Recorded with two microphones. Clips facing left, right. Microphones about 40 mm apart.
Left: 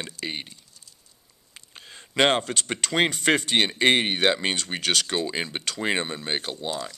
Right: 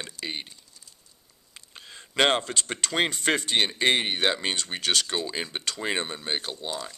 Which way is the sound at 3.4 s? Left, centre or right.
Left.